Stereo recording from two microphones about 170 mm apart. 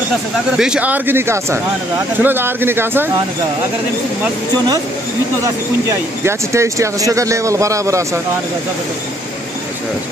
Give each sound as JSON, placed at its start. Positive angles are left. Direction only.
{"t": 0.5, "sound": "speech", "side_deg": -5}
{"t": 5.4, "sound": "speech", "side_deg": -20}